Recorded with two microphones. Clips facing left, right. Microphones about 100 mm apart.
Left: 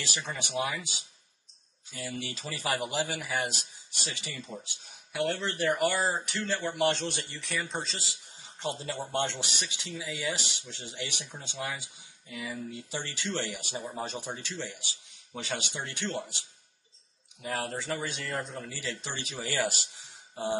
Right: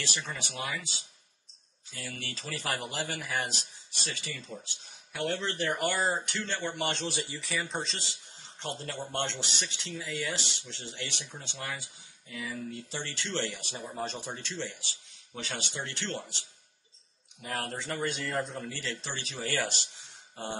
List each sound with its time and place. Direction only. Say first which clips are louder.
0.4 s speech: left 5 dB; 15° left (ahead or behind)
4.0 s speech: even; 15° left (ahead or behind)
5.1 s speech: left 2 dB; 5° left (ahead or behind)
8.4 s speech: left 4 dB; 15° left (ahead or behind)
17.4 s speech: left 2 dB; centre (ahead or behind)